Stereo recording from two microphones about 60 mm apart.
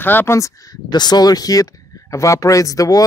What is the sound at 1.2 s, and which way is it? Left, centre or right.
Speech, left.